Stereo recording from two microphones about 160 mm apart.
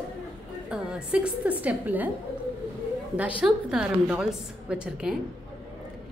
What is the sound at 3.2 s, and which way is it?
A woman's voice, 5° right (ahead or behind).